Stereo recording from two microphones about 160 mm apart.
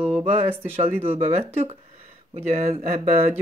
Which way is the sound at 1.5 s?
40° right (ahead or behind).